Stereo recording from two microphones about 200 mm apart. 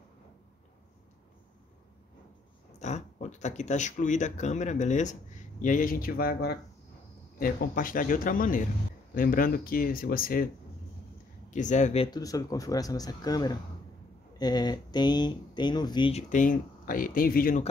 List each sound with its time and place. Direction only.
2.8 s speech: 35° left (ahead or behind)
11.5 s speech: 35° left (ahead or behind)